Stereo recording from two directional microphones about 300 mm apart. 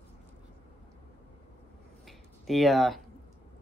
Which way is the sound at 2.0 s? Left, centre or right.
Centre.